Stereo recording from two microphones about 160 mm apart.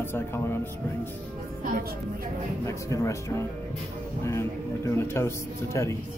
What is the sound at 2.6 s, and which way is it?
A man's voice, 20° left (ahead or behind).